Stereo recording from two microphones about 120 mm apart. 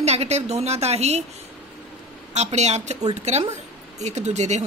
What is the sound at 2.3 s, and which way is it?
Speech, 70° right (ahead or behind).